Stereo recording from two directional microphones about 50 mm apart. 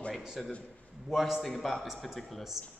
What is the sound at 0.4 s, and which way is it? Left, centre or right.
A man's voice, centre.